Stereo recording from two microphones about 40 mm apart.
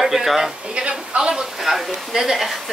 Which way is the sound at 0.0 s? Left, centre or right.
Centre.